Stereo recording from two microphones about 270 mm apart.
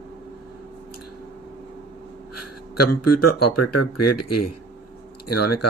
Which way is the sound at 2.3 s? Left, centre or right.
Left.